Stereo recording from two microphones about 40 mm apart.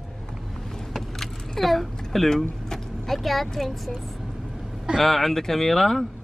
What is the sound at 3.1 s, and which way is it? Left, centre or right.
Speech, centre.